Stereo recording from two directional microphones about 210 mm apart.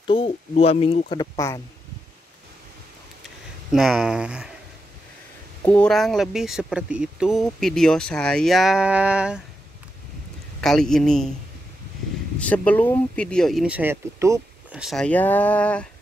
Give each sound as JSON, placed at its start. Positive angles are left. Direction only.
{"t": 0.0, "sound": "speech", "side_deg": 25}
{"t": 3.7, "sound": "speech", "side_deg": -5}
{"t": 5.7, "sound": "speech", "side_deg": 5}
{"t": 10.6, "sound": "speech", "side_deg": 0}
{"t": 12.4, "sound": "speech", "side_deg": 5}
{"t": 14.8, "sound": "speech", "side_deg": 0}